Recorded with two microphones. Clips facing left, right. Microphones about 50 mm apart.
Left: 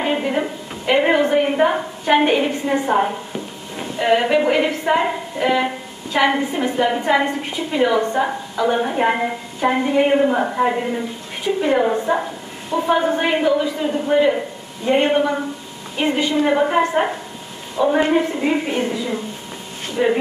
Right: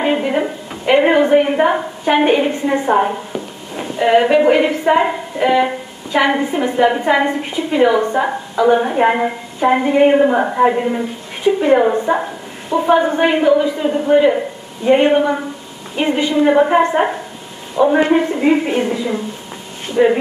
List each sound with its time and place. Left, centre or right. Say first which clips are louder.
0.0 s a sound: right 4 dB; centre
4.0 s a woman's voice: right 5 dB; centre
18.7 s a woman's voice: right 4 dB; right
20.0 s a woman's voice: right 6 dB; right